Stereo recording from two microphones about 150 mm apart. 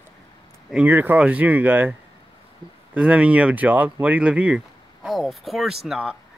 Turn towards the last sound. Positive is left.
turn(degrees=-5)  # may be behind; listen again after turning